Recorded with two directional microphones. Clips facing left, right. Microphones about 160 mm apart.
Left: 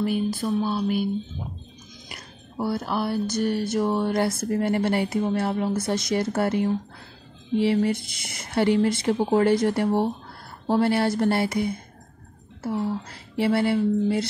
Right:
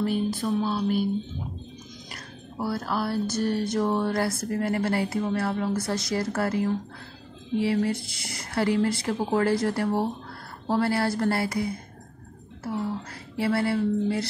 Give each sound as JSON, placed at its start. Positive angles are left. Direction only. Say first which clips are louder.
{"t": 0.0, "sound": "music", "louder": "left 1 dB", "side_deg": 10}
{"t": 2.0, "sound": "speech", "louder": "right 2 dB", "side_deg": 15}
{"t": 13.4, "sound": "speech", "louder": "left 3 dB", "side_deg": 25}